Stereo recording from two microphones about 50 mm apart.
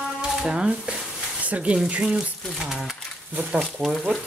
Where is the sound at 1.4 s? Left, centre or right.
Right.